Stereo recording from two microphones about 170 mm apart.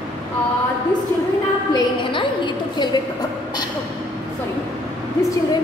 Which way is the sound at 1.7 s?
25° left (ahead or behind).